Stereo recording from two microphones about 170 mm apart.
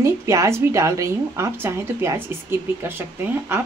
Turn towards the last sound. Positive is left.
turn(degrees=-15)  # may be behind; listen again after turning